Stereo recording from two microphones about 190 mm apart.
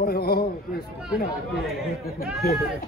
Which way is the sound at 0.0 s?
55° left (ahead or behind).